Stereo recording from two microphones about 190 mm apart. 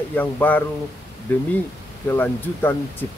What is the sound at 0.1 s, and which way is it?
Speech, 10° left (ahead or behind).